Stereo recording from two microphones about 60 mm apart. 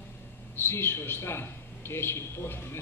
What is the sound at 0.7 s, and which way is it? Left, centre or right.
Speech, left.